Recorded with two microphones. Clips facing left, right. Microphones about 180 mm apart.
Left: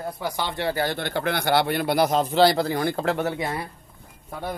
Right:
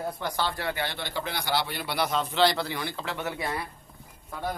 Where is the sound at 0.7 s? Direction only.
40° left (ahead or behind).